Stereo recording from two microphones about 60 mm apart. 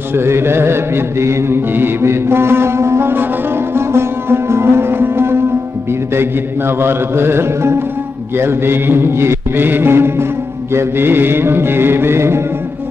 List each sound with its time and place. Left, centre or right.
0.1 s music: right